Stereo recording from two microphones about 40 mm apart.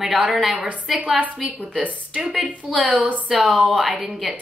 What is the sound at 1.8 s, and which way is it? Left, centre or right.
Speech, right.